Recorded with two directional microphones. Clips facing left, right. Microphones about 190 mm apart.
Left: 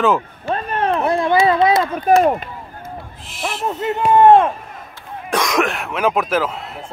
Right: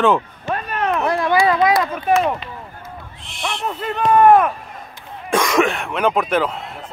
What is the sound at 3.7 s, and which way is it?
Speech, 25° left (ahead or behind).